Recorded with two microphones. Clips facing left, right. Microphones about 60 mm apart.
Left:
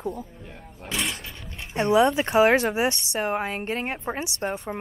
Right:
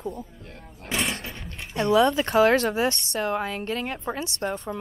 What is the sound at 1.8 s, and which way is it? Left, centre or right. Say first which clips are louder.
Speech: even; left.